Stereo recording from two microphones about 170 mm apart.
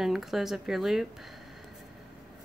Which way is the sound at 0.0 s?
Centre (ahead or behind).